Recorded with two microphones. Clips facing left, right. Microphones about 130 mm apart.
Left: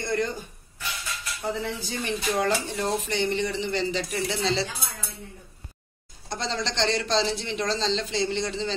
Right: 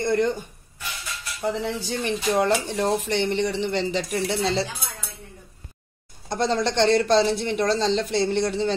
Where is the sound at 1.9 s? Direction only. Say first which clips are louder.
Right 5 dB; 35° right (ahead or behind).